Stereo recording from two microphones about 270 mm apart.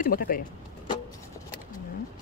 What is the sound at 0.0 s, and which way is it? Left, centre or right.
Speech, left.